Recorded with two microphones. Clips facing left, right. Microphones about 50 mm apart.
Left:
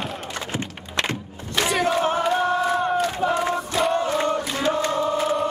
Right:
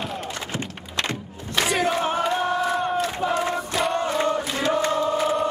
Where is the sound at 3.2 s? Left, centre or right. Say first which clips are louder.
Even; centre.